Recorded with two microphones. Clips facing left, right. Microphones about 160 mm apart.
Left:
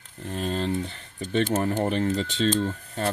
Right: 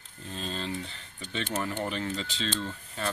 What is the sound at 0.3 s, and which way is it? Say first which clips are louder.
Speech: left 8 dB; 55° left (ahead or behind).